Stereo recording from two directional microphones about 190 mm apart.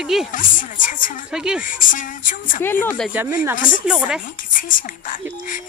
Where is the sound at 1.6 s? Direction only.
45° left (ahead or behind).